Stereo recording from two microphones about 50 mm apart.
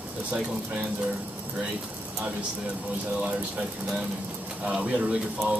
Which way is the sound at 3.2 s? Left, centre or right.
Right.